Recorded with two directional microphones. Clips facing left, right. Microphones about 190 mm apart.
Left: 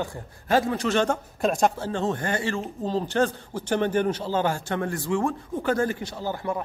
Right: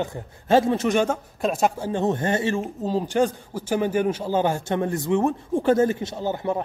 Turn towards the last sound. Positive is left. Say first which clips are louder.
# right 4 dB
turn(degrees=-20)  # may be behind; listen again after turning